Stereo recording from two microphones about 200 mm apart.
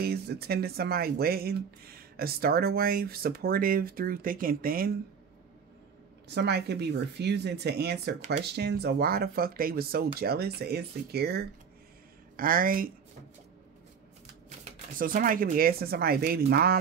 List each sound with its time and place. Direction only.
0.0 s speech: 50° right (ahead or behind)
6.2 s speech: 55° right (ahead or behind)
14.6 s speech: 45° right (ahead or behind)